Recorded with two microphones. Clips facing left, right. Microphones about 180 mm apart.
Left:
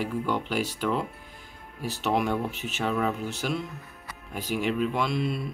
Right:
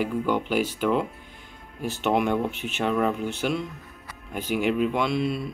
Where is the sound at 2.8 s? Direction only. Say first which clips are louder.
Right 3 dB; centre (ahead or behind).